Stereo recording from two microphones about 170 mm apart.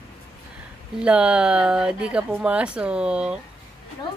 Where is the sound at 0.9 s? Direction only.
5° right (ahead or behind).